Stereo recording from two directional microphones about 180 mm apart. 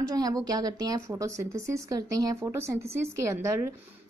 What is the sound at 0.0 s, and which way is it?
A woman's voice, 20° right (ahead or behind).